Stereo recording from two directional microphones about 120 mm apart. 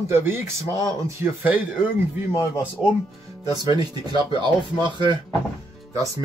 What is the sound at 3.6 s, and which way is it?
Speech, 35° right (ahead or behind).